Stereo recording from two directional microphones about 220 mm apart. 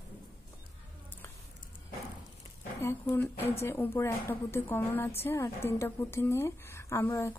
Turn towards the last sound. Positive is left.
turn(degrees=10)  # may be behind; listen again after turning